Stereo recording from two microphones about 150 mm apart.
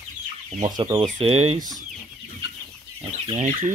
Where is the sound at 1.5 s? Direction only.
25° right (ahead or behind).